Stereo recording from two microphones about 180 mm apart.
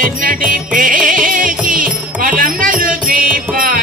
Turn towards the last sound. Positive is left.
turn(degrees=-50)  # may be behind; listen again after turning